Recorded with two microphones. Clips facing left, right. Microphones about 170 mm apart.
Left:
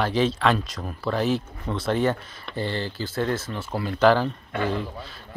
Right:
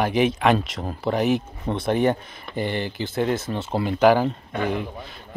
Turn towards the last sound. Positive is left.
turn(degrees=-15)  # may be behind; listen again after turning